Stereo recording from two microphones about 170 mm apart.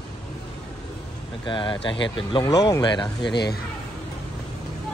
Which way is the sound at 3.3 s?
75° left (ahead or behind).